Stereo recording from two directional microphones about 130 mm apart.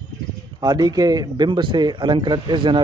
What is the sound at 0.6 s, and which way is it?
Speech, 30° right (ahead or behind).